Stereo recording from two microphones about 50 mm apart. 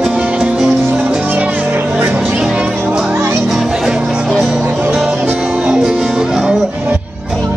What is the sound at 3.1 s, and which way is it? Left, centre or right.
Music, right.